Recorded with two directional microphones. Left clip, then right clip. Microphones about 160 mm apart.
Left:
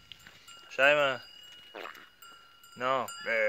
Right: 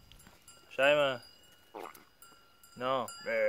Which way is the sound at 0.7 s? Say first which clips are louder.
Left 3 dB; 10° left (ahead or behind).